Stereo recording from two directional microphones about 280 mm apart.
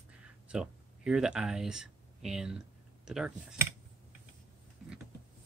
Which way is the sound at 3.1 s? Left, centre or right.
Centre.